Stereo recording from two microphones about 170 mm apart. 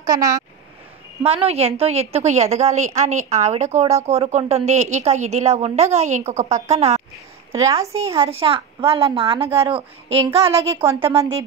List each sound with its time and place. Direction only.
0.0 s speech: 20° right (ahead or behind)
1.2 s a woman's voice: 35° right (ahead or behind)
7.5 s a woman's voice: 20° right (ahead or behind)
8.2 s a woman's voice: 35° right (ahead or behind)